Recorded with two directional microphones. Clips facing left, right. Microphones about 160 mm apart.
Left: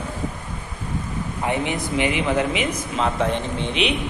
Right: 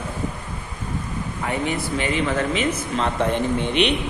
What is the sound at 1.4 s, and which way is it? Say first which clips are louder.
Speech: left 1 dB; 15° left (ahead or behind).